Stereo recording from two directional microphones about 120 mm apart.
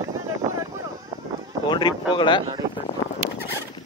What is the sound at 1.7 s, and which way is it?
Speech, 40° left (ahead or behind).